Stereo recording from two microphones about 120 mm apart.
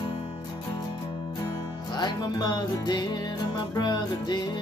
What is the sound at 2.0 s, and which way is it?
Music, 35° left (ahead or behind).